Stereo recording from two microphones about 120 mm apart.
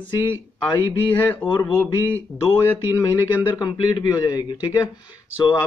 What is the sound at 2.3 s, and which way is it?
Speech, centre (ahead or behind).